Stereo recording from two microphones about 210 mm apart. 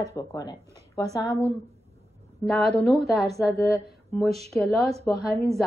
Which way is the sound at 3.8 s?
Centre (ahead or behind).